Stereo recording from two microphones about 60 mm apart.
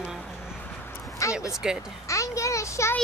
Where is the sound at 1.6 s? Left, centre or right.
Centre.